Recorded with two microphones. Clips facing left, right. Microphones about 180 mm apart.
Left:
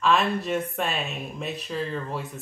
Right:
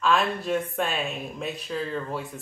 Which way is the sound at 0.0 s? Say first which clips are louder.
Left 1 dB; centre (ahead or behind).